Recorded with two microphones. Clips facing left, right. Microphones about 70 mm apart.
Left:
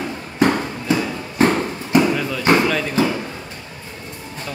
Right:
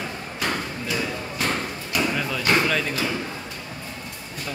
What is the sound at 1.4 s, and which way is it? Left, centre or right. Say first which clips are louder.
Clip-clop: left 11 dB; left.